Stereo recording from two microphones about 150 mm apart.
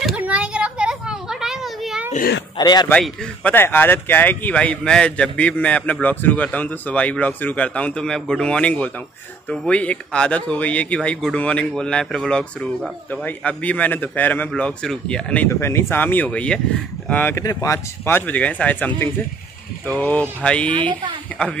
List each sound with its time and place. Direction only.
0.0 s a sound: 10° right (ahead or behind)
2.5 s a man's voice: 30° left (ahead or behind)
2.9 s speech: 10° left (ahead or behind)